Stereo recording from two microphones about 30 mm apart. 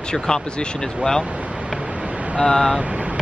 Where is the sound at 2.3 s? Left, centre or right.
Left.